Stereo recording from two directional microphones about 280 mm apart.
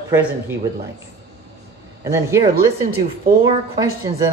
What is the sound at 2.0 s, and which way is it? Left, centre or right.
Speech, centre.